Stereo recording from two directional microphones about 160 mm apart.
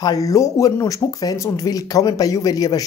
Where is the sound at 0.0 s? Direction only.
20° left (ahead or behind).